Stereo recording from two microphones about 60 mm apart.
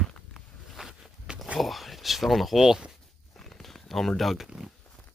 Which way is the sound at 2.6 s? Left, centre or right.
Centre.